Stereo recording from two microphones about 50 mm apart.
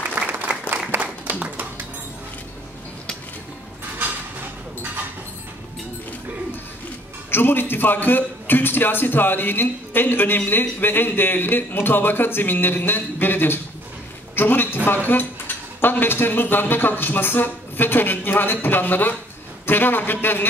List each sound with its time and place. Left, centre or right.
0.2 s applause: right
1.3 s music: right
7.2 s a man's voice: left
14.3 s a sound: left
15.0 s a man's voice: left